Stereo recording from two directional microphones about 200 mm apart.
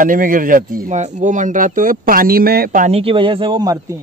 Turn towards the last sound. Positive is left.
turn(degrees=-15)  # may be behind; listen again after turning